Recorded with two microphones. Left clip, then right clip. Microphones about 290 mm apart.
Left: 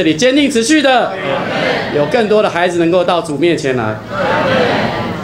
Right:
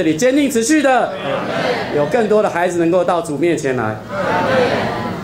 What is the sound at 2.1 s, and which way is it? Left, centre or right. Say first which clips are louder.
Speech: left 3 dB; centre.